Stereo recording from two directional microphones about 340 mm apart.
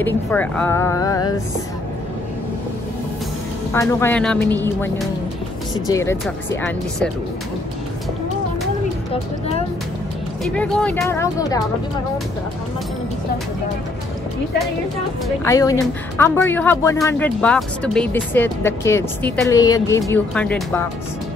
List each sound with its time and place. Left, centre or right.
0.0 s speech: centre
3.7 s speech: centre
10.4 s speech: centre
15.2 s speech: centre